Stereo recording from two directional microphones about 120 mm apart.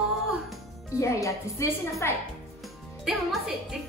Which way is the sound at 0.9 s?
25° left (ahead or behind).